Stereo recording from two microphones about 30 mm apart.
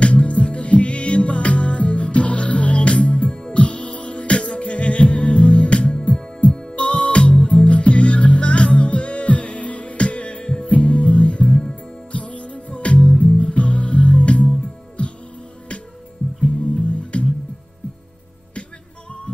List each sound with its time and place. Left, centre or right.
0.0 s music: left
16.7 s music: left